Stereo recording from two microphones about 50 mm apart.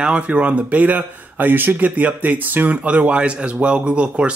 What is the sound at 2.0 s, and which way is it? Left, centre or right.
Speech, right.